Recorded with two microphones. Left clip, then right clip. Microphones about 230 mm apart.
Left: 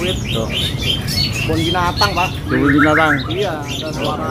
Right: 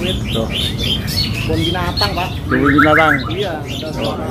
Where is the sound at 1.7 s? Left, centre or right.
Centre.